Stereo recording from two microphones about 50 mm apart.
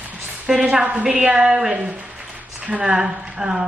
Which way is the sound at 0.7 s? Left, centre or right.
Right.